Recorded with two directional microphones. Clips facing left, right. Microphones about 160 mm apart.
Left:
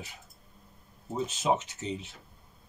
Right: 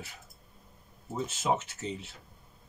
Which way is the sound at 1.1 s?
15° left (ahead or behind).